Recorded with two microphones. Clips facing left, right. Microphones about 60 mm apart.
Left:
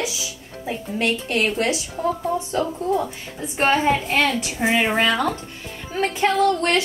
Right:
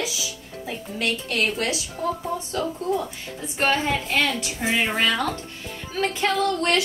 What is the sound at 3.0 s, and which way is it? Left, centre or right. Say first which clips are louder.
A woman's voice: left 4 dB; left.